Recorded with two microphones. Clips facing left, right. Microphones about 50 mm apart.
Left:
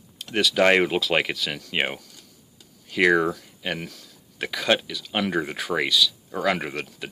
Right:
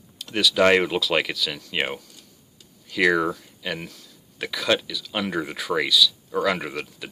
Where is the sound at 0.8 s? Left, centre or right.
Left.